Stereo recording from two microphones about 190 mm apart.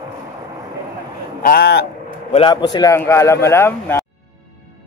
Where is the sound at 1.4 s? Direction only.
55° left (ahead or behind).